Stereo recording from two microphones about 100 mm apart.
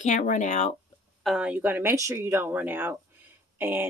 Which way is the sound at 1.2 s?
5° right (ahead or behind).